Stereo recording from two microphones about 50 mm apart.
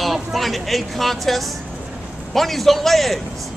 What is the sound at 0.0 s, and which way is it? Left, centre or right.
A woman's voice, centre.